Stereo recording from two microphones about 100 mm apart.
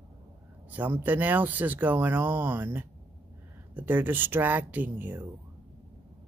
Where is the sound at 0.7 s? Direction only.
15° right (ahead or behind).